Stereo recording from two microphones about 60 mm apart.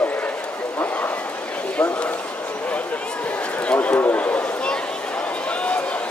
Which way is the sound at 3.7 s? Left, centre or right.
Left.